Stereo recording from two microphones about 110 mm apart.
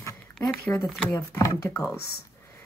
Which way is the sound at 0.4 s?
5° left (ahead or behind).